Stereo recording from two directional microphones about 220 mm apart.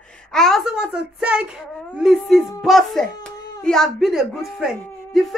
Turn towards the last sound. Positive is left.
turn(degrees=0)  # may be behind; listen again after turning